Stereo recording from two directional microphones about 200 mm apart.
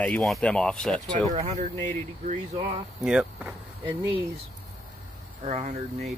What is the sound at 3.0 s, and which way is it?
Speech, 5° right (ahead or behind).